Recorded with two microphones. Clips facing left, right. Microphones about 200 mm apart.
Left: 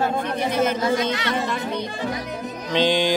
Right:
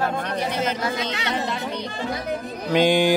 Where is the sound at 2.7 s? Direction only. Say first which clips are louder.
Right 2 dB; 10° right (ahead or behind).